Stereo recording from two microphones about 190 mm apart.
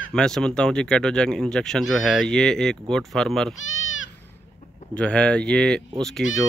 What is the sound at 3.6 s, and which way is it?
Goat, 90° left.